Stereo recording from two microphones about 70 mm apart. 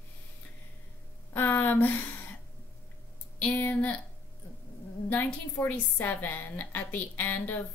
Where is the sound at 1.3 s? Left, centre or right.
Left.